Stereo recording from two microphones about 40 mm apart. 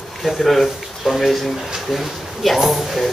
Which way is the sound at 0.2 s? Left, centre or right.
Centre.